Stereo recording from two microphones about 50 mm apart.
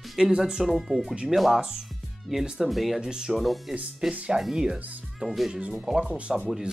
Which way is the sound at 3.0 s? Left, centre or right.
Centre.